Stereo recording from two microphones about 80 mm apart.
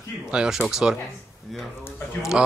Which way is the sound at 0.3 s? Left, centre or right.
Centre.